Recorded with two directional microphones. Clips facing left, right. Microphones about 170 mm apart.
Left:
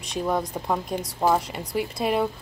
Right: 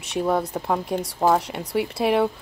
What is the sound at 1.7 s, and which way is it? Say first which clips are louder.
Speech: right 3 dB; 75° right (ahead or behind).